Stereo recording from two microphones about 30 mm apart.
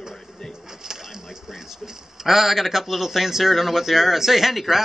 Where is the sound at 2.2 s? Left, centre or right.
Centre.